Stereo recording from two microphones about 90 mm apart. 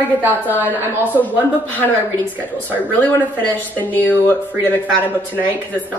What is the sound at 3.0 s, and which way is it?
Speech, 20° left (ahead or behind).